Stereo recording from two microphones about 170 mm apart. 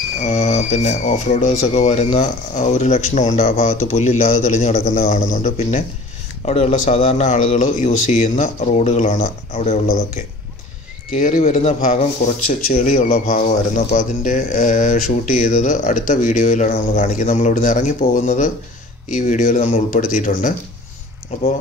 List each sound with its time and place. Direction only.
0.2 s speech: 45° left (ahead or behind)
11.1 s speech: 40° left (ahead or behind)